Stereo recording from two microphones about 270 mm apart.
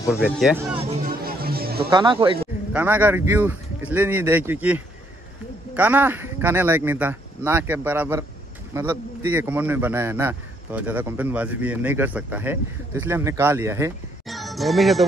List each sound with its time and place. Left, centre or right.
0.1 s speech: centre
0.8 s music: right
1.9 s a man's voice: centre
2.7 s a man's voice: centre
14.2 s music: centre